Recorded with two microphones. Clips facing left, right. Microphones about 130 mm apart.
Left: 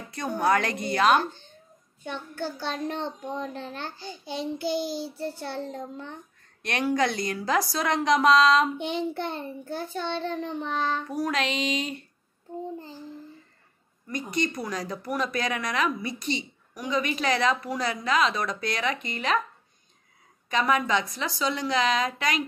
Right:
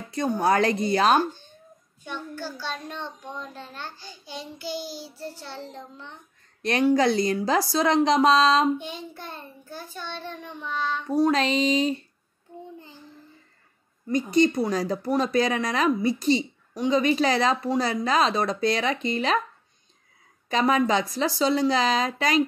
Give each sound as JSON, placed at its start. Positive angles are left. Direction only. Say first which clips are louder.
{"t": 0.1, "sound": "speech", "louder": "right 2 dB", "side_deg": -30}
{"t": 2.3, "sound": "a child's voice", "louder": "left 5 dB", "side_deg": 55}
{"t": 6.6, "sound": "a woman's voice", "louder": "right 5 dB", "side_deg": -30}
{"t": 8.7, "sound": "a child's voice", "louder": "left 6 dB", "side_deg": 60}
{"t": 11.1, "sound": "speech", "louder": "right 6 dB", "side_deg": -30}
{"t": 14.0, "sound": "speech", "louder": "right 8 dB", "side_deg": -30}
{"t": 20.4, "sound": "speech", "louder": "right 3 dB", "side_deg": -30}